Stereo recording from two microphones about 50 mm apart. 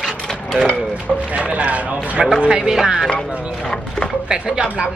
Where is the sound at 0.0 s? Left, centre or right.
Centre.